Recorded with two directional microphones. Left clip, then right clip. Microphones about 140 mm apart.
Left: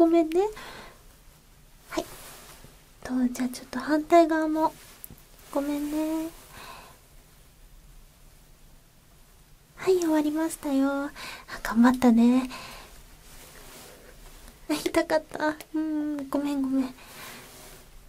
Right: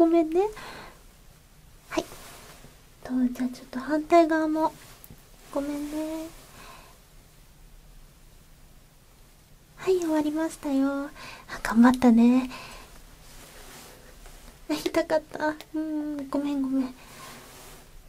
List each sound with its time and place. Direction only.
0.0 s speech: centre (ahead or behind)
3.0 s speech: 20° left (ahead or behind)
3.9 s speech: centre (ahead or behind)
5.5 s speech: 15° left (ahead or behind)
6.6 s gasp: 15° left (ahead or behind)
10.0 s speech: 5° left (ahead or behind)
11.4 s speech: 5° right (ahead or behind)
14.9 s speech: centre (ahead or behind)